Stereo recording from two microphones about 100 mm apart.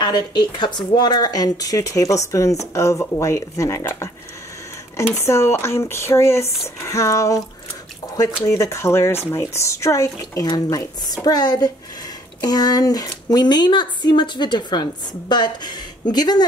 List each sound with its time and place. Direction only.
0.0 s speech: 45° left (ahead or behind); by 4.1 s 30° left (ahead or behind)
5.1 s speech: 25° left (ahead or behind)
8.5 s speech: 30° left (ahead or behind)